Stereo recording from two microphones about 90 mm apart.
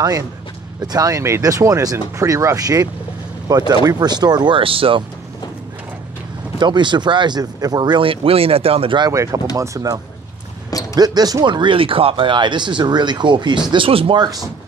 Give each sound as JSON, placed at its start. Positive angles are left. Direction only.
{"t": 0.9, "sound": "speech", "side_deg": -40}
{"t": 4.6, "sound": "speech", "side_deg": -90}
{"t": 6.6, "sound": "speech", "side_deg": -60}
{"t": 8.0, "sound": "speech", "side_deg": -90}
{"t": 9.1, "sound": "speech", "side_deg": -35}
{"t": 11.0, "sound": "speech", "side_deg": -45}
{"t": 14.1, "sound": "speech", "side_deg": -50}